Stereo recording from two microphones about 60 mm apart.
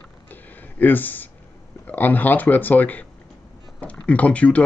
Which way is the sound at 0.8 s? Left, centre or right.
Left.